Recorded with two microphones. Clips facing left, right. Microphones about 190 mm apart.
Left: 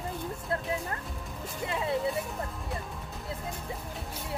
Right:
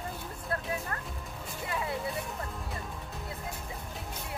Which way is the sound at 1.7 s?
25° left (ahead or behind).